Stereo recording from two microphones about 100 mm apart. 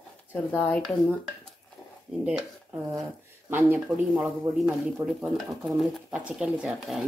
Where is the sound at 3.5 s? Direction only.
20° right (ahead or behind).